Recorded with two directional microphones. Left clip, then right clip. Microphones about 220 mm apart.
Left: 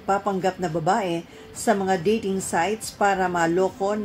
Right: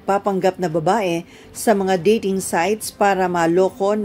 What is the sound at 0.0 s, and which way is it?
A woman's voice, 40° right (ahead or behind).